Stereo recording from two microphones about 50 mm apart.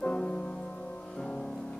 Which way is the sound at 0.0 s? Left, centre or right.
Centre.